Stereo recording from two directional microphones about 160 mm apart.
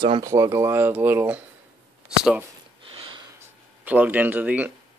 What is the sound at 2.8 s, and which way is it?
Sniff, 35° right (ahead or behind).